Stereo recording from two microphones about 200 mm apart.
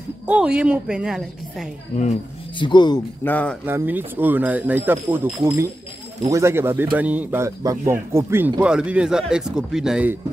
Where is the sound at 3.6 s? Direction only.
10° right (ahead or behind).